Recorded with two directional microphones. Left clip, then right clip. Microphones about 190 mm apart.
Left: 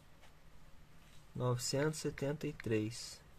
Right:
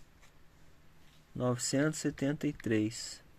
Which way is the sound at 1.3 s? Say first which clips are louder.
Right 5 dB; 15° right (ahead or behind).